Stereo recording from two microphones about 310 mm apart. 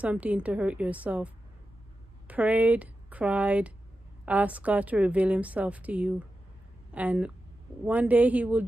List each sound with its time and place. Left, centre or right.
0.0 s a woman's voice: centre